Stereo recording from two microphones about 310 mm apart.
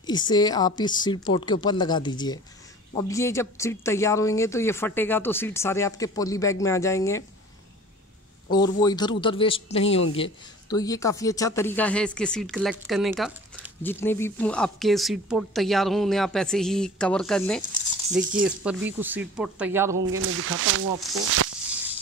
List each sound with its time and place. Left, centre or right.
0.0 s speech: centre
8.5 s speech: centre
20.1 s speech: right